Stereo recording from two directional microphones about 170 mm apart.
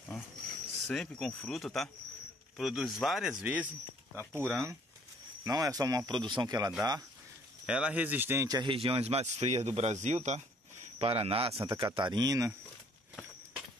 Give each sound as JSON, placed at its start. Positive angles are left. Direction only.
{"t": 0.8, "sound": "speech", "side_deg": 5}
{"t": 4.2, "sound": "speech", "side_deg": 10}
{"t": 5.4, "sound": "speech", "side_deg": -20}
{"t": 7.6, "sound": "a man's voice", "side_deg": -5}